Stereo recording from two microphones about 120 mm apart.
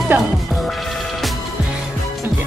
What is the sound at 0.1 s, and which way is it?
Music, 15° right (ahead or behind).